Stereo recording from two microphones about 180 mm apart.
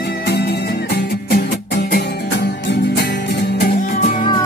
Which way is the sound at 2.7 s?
65° left (ahead or behind).